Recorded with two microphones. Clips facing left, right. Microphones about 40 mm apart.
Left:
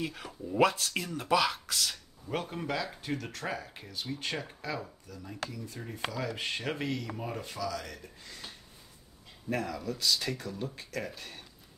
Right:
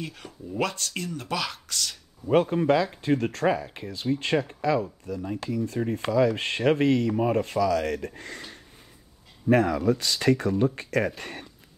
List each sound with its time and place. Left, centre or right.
0.0 s speech: centre
2.2 s speech: right
3.9 s speech: right
9.5 s speech: right